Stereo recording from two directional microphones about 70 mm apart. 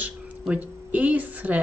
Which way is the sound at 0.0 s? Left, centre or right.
Right.